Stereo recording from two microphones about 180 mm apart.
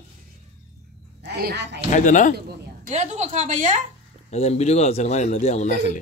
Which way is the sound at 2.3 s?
60° right (ahead or behind).